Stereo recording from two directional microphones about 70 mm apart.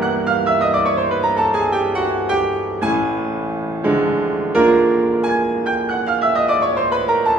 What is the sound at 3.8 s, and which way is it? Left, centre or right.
Music, right.